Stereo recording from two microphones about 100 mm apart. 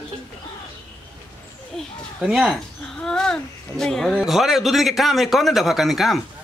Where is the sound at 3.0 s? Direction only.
5° left (ahead or behind).